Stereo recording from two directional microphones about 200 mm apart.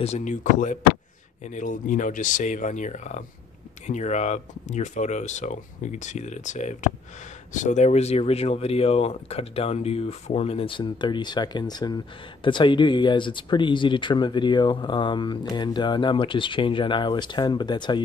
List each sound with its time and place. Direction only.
0.0 s speech: 35° left (ahead or behind)